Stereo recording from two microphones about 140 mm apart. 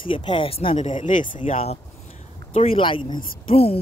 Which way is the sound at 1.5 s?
45° left (ahead or behind).